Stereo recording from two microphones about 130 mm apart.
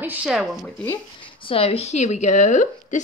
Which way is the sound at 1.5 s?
50° left (ahead or behind).